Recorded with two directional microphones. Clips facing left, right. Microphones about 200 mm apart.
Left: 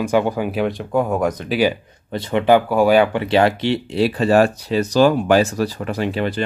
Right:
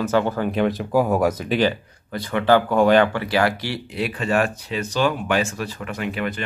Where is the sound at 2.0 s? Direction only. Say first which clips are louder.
Left 3 dB; 25° left (ahead or behind); by 3.1 s 10° left (ahead or behind).